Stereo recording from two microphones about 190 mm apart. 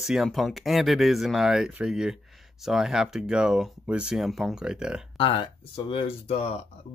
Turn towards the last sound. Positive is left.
turn(degrees=35)  # may be behind; listen again after turning